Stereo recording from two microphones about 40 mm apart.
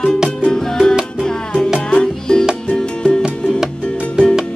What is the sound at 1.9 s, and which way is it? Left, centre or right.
Music, left.